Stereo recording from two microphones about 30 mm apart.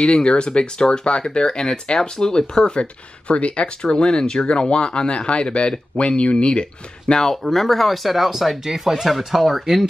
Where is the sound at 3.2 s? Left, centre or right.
Left.